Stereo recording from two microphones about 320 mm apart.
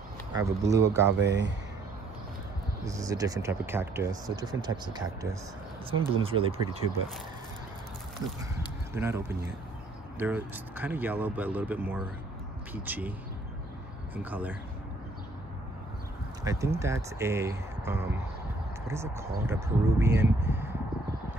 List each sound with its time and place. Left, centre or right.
0.3 s speech: centre
0.8 s speech: right
2.8 s speech: centre
8.9 s speech: centre
14.1 s speech: centre
16.4 s speech: centre